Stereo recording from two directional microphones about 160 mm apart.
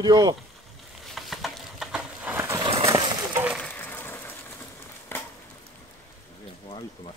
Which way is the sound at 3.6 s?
10° left (ahead or behind).